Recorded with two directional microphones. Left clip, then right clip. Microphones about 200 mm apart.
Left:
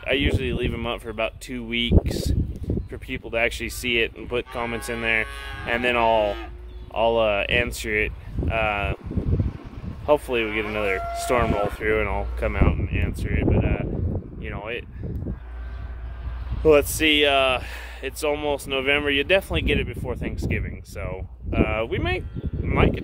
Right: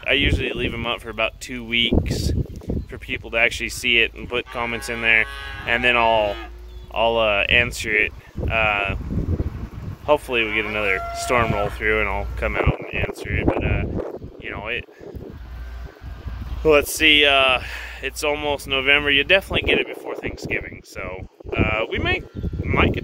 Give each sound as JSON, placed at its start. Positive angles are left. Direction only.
{"t": 0.0, "sound": "speech", "side_deg": 5}
{"t": 5.3, "sound": "speech", "side_deg": 25}
{"t": 5.7, "sound": "speech", "side_deg": 5}
{"t": 10.0, "sound": "speech", "side_deg": 5}
{"t": 14.5, "sound": "a sound", "side_deg": 5}
{"t": 16.6, "sound": "speech", "side_deg": 5}